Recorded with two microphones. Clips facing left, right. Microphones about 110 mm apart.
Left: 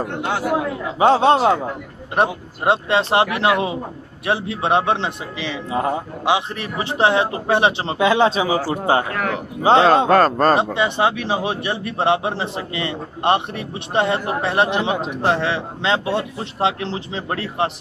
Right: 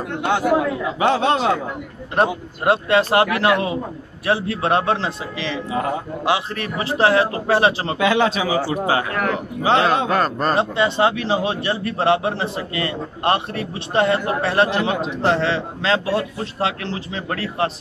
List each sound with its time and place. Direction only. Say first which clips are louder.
0.2 s a man's voice: right 4 dB; centre (ahead or behind)
0.9 s a man's voice: left 5 dB; 35° left (ahead or behind)
2.1 s a man's voice: even; 25° left (ahead or behind)
9.1 s a man's voice: right 1 dB; 5° right (ahead or behind)
9.6 s a man's voice: left 4 dB; 30° left (ahead or behind)
10.5 s a man's voice: left 1 dB; 20° left (ahead or behind)